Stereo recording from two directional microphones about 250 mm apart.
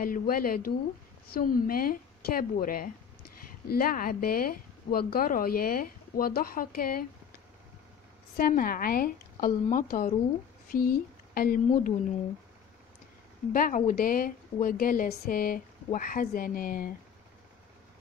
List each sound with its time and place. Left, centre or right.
0.0 s a woman's voice: left
8.4 s a woman's voice: left
13.5 s a woman's voice: left